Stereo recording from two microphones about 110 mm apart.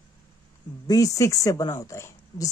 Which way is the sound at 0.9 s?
30° left (ahead or behind).